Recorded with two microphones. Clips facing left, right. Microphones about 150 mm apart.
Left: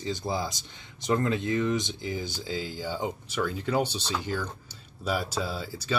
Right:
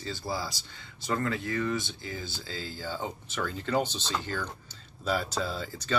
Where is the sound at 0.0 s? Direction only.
20° left (ahead or behind).